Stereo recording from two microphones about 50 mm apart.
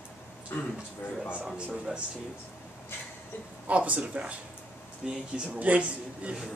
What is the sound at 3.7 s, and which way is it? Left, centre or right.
A man's voice, right.